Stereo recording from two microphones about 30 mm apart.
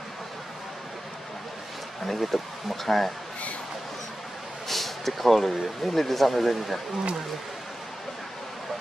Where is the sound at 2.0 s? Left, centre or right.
Centre.